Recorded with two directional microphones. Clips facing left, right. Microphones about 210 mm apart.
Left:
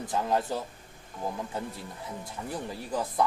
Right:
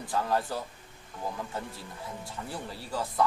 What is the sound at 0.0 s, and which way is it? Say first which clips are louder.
Speech: left 1 dB; 20° left (ahead or behind).